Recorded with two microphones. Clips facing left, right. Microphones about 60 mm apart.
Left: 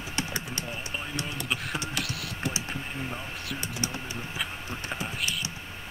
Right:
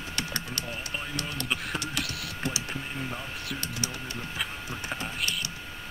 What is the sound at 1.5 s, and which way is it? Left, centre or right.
Computer keyboard, centre.